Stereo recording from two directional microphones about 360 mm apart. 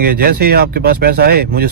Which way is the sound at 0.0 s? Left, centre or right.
Right.